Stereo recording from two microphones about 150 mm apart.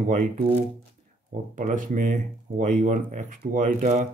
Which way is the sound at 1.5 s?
60° right (ahead or behind).